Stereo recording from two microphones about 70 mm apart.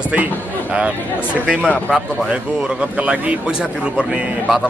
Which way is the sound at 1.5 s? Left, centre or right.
Centre.